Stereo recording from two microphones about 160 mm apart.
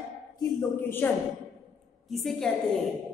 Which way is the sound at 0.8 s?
15° left (ahead or behind).